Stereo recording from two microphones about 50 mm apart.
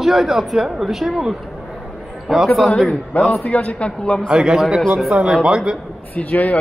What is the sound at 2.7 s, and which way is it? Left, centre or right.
Speech, centre.